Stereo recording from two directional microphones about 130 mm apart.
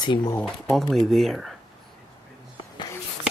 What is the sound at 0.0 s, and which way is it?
Speech, 30° left (ahead or behind).